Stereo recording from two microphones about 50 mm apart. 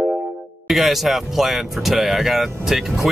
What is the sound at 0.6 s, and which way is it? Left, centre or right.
Speech, centre.